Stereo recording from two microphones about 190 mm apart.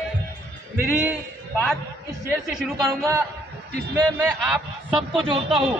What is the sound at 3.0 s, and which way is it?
Speech, 15° right (ahead or behind).